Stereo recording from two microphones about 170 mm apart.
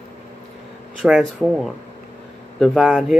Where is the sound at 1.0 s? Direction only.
5° right (ahead or behind).